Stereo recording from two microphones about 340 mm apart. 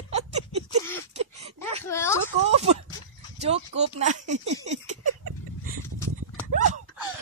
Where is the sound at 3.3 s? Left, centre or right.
Centre.